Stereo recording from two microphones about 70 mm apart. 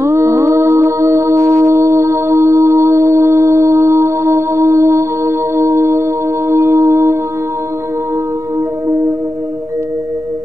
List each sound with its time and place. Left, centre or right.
0.0 s music: right